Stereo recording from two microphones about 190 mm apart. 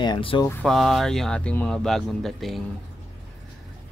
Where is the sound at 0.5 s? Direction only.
5° left (ahead or behind).